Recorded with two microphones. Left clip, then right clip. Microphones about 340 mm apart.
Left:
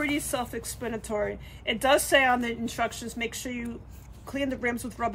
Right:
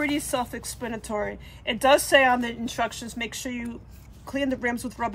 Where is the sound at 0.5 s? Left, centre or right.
Centre.